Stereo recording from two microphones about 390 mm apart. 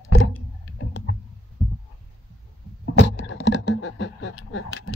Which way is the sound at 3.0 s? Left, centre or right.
Left.